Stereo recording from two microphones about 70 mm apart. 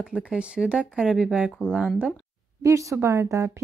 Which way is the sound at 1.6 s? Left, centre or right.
Right.